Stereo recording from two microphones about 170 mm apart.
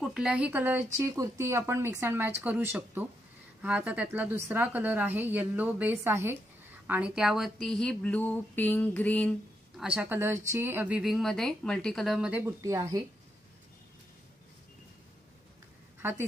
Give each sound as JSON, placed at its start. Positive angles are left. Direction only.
{"t": 0.0, "sound": "a woman's voice", "side_deg": -5}
{"t": 7.6, "sound": "a sound", "side_deg": 5}
{"t": 9.8, "sound": "speech", "side_deg": -5}
{"t": 12.6, "sound": "speech", "side_deg": -20}
{"t": 16.0, "sound": "a woman's voice", "side_deg": -15}